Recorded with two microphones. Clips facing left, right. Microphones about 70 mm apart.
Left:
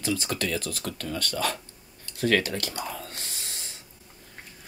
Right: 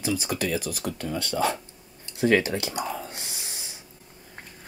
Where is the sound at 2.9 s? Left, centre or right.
Centre.